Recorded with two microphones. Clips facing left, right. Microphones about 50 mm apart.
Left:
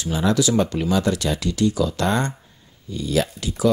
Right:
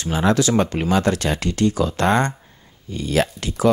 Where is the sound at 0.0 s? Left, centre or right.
Right.